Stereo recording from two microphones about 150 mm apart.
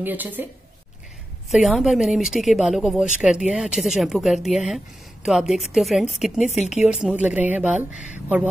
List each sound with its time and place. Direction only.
0.0 s speech: 10° right (ahead or behind)
1.5 s a woman's voice: centre (ahead or behind)
6.6 s speech: 50° left (ahead or behind)
6.9 s speech: 5° right (ahead or behind)